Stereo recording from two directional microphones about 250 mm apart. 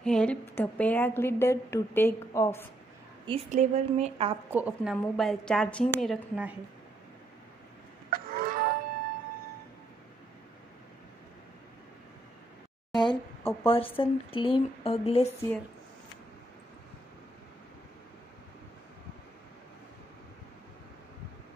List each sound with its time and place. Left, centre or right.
0.0 s a woman's voice: centre
3.3 s a woman's voice: right
4.5 s a woman's voice: centre
8.1 s a sound: right
12.9 s speech: centre